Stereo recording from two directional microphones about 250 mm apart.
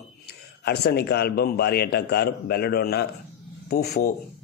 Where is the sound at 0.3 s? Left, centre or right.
Left.